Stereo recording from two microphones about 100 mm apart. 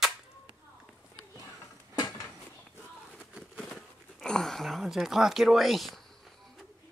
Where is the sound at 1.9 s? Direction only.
45° left (ahead or behind).